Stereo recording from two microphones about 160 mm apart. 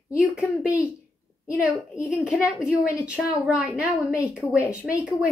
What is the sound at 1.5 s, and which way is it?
A woman's voice, 5° right (ahead or behind).